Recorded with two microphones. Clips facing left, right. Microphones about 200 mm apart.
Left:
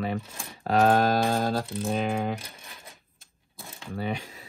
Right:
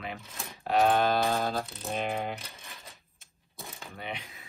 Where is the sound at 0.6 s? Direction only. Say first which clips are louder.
Left 3 dB; 50° left (ahead or behind).